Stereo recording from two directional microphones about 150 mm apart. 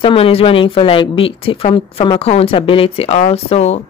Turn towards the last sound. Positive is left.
turn(degrees=45)  # may be behind; listen again after turning